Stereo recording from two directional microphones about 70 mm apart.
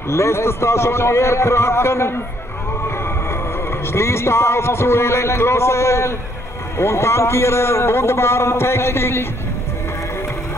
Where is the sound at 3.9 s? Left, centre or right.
Left.